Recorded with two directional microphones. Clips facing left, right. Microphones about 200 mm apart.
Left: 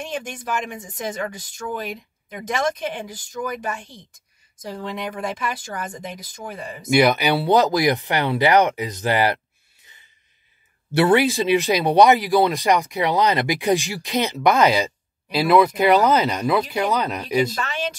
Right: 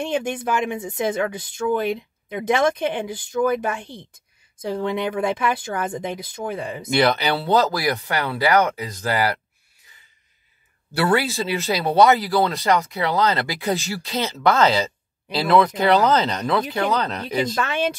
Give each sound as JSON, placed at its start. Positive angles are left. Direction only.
{"t": 0.0, "sound": "speech", "side_deg": -60}
{"t": 6.9, "sound": "speech", "side_deg": 10}
{"t": 10.9, "sound": "speech", "side_deg": 20}